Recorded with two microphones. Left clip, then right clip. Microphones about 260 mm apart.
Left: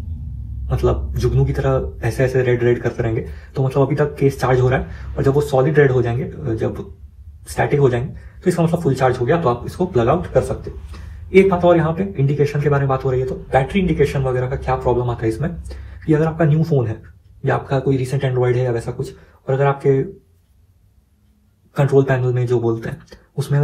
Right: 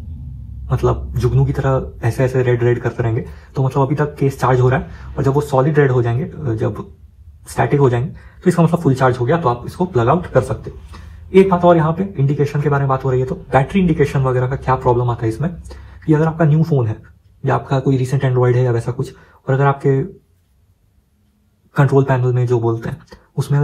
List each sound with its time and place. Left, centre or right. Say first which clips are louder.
0.7 s speech: right 1 dB; centre
21.7 s speech: even; right